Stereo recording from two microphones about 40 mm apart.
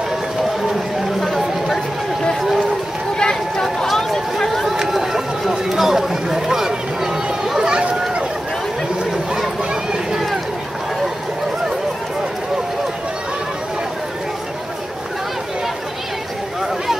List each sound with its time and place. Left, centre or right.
3.2 s run: centre
3.6 s run: centre
9.0 s a sound: centre